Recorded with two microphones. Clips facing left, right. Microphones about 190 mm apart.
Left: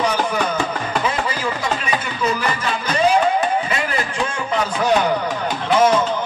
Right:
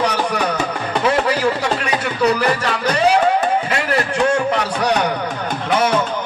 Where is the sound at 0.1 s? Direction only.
75° right (ahead or behind).